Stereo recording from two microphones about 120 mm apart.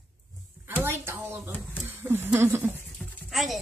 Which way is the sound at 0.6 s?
20° right (ahead or behind).